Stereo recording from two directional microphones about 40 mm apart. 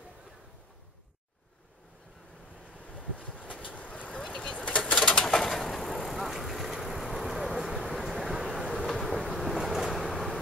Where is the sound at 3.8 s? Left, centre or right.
Left.